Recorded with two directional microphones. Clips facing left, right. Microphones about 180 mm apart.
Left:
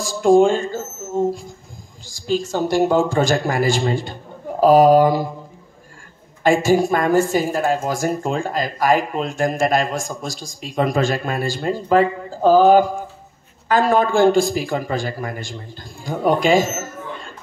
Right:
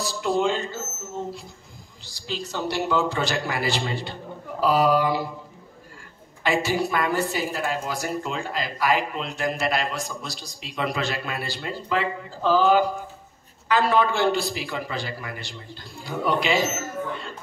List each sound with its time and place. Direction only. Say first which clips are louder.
0.0 s a woman's voice: left 10 dB; 45° left (ahead or behind)
6.4 s a woman's voice: left 8 dB; 45° left (ahead or behind)